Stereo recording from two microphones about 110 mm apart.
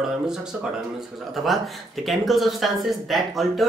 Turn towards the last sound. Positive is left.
turn(degrees=0)  # may be behind; listen again after turning